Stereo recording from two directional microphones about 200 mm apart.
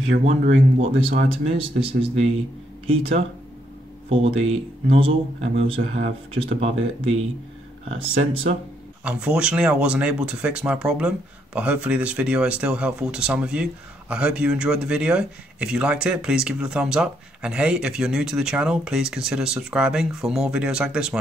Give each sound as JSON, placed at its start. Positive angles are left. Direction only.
{"t": 0.1, "sound": "speech", "side_deg": -35}
{"t": 9.0, "sound": "speech", "side_deg": -5}